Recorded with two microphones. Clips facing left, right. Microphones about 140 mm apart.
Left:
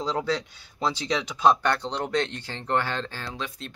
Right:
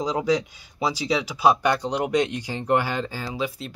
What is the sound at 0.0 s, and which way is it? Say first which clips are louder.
Speech: right 4 dB; 15° right (ahead or behind).